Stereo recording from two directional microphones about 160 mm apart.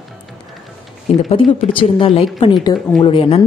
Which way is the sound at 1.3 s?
35° left (ahead or behind).